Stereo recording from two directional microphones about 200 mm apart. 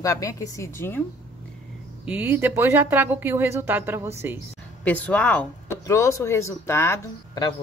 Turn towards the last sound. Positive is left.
turn(degrees=15)  # may be behind; listen again after turning